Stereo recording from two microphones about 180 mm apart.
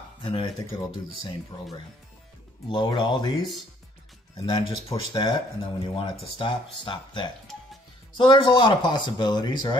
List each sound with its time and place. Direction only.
0.2 s speech: 30° left (ahead or behind)
2.7 s speech: 25° left (ahead or behind)
4.4 s speech: 25° left (ahead or behind)